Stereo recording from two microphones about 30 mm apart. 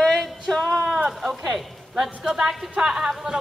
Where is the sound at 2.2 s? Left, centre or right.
Right.